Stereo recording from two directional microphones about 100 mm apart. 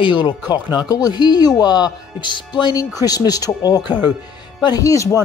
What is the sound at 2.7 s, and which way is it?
Speech, 40° left (ahead or behind).